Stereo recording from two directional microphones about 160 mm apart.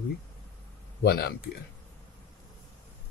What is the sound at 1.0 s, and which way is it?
Speech, 80° left.